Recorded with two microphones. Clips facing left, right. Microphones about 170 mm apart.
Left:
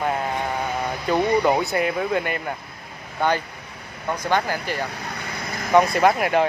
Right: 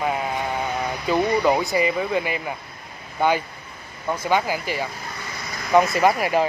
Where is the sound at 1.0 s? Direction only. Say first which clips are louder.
Even; centre (ahead or behind).